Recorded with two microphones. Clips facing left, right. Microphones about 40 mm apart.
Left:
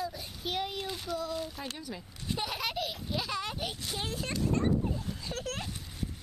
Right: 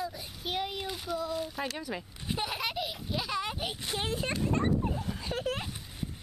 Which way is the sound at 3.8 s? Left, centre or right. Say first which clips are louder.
Right 6 dB; right.